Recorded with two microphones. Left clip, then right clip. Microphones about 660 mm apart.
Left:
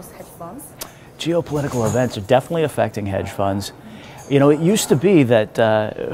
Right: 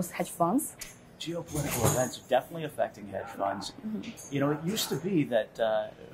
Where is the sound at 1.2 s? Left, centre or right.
Left.